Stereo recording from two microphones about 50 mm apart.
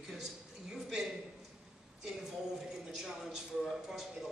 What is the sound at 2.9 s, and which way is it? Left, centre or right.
Speech, centre.